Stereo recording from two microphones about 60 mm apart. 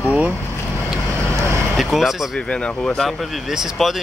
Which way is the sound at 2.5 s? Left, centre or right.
Centre.